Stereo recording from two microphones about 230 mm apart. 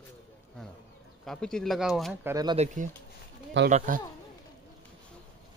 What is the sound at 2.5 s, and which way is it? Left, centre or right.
Speech, right.